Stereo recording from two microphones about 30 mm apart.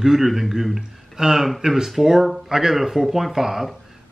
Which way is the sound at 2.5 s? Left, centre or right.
Centre.